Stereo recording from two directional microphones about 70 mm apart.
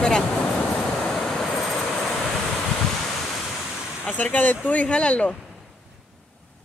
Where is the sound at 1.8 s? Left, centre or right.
Centre.